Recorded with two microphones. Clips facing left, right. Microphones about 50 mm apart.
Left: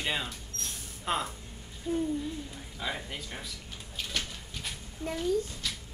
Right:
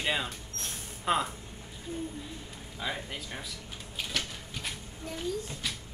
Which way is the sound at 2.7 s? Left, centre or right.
Centre.